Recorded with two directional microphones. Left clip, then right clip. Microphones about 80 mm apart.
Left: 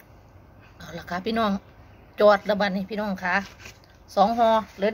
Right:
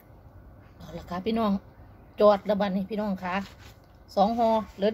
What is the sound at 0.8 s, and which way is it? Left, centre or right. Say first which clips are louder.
Speech: left 4 dB; right.